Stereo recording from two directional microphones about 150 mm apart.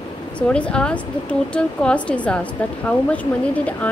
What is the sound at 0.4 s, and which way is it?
A woman's voice, 5° left (ahead or behind).